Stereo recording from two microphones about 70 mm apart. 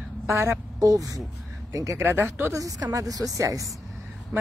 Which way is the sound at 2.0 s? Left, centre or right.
Right.